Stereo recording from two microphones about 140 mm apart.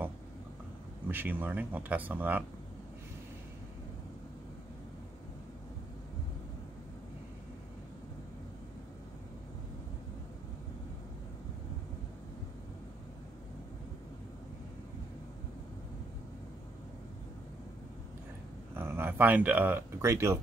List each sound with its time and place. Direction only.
1.0 s speech: 15° right (ahead or behind)
18.8 s speech: 15° right (ahead or behind)